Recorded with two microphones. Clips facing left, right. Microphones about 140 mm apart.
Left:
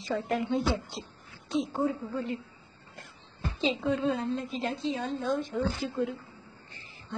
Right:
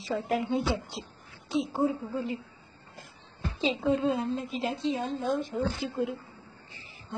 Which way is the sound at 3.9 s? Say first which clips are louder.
Right 4 dB; 25° right (ahead or behind).